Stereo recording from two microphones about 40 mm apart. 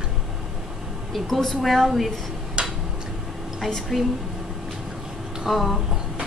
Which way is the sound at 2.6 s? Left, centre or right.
Right.